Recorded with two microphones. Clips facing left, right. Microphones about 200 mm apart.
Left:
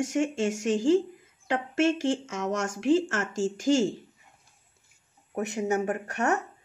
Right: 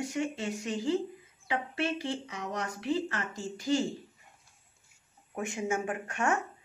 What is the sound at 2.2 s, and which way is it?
Speech, 45° left (ahead or behind).